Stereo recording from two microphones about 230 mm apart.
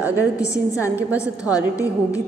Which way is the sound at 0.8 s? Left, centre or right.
Centre.